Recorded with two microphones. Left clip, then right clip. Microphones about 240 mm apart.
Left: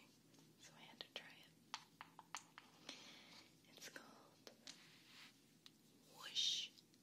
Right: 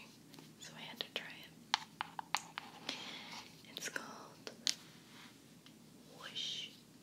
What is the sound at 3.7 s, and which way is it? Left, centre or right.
Whispering, centre.